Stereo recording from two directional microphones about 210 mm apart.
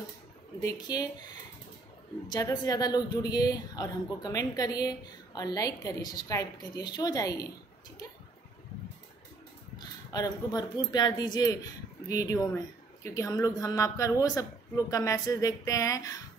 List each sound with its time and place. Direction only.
0.6 s speech: 15° left (ahead or behind)
2.2 s speech: 15° left (ahead or behind)
9.8 s speech: 20° left (ahead or behind)